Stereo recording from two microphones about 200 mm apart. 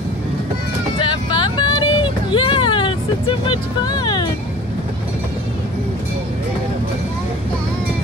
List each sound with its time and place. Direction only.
0.9 s vehicle: 25° left (ahead or behind)